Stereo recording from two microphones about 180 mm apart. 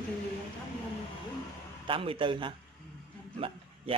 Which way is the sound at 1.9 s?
30° right (ahead or behind).